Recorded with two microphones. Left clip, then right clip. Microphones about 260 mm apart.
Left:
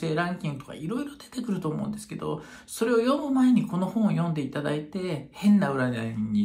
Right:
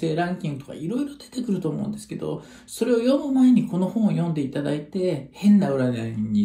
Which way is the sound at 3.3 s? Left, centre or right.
Centre.